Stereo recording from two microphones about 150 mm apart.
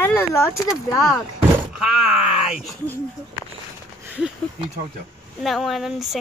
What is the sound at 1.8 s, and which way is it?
Speech, 5° right (ahead or behind).